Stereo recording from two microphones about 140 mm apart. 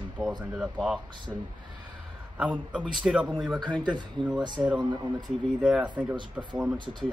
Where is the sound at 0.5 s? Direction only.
5° right (ahead or behind).